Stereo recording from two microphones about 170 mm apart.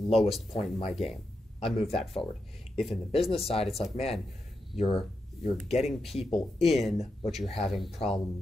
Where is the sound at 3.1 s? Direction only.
35° left (ahead or behind).